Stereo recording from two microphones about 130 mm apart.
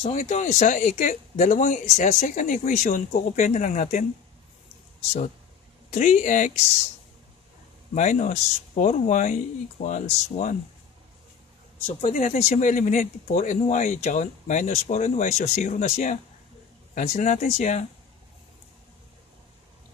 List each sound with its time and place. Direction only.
0.1 s speech: 65° left (ahead or behind)
5.9 s speech: 70° left (ahead or behind)
7.9 s speech: 70° left (ahead or behind)
11.8 s speech: 60° left (ahead or behind)